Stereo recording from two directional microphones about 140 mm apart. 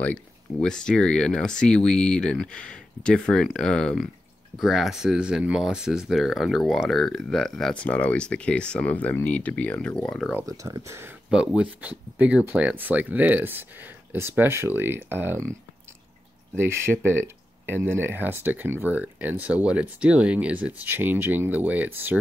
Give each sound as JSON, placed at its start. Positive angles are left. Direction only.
{"t": 0.0, "sound": "speech", "side_deg": 10}
{"t": 10.3, "sound": "speech", "side_deg": -25}
{"t": 11.2, "sound": "speech", "side_deg": -5}
{"t": 16.5, "sound": "speech", "side_deg": -20}